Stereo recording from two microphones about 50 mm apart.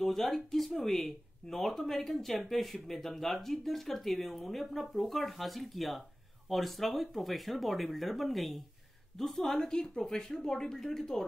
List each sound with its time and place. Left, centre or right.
0.0 s speech: centre
9.6 s speech: centre